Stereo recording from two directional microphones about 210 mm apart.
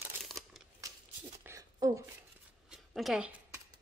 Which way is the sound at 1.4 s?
15° right (ahead or behind).